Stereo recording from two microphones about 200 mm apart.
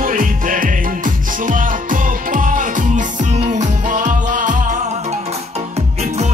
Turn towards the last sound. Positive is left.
turn(degrees=-40)  # may be behind; listen again after turning